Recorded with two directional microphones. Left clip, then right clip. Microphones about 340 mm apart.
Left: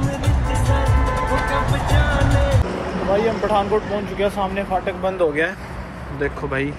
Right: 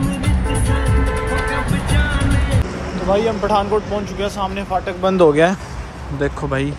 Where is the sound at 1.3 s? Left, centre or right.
Left.